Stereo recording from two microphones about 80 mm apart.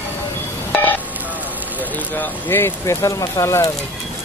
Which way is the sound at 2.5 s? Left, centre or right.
Left.